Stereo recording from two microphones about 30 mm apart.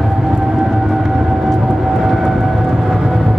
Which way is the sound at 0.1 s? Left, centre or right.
Centre.